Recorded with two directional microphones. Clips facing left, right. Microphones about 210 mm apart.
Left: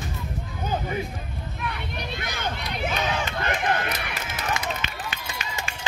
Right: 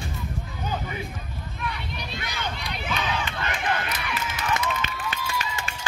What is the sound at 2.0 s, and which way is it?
Crowd, 55° left (ahead or behind).